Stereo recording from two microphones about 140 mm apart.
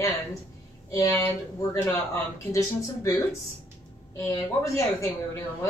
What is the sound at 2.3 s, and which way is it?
Speech, 20° left (ahead or behind).